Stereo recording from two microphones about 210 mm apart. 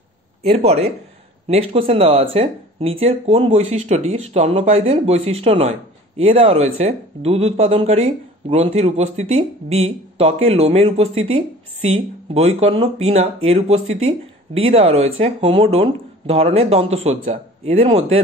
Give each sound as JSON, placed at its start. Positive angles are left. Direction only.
{"t": 0.4, "sound": "speech", "side_deg": -30}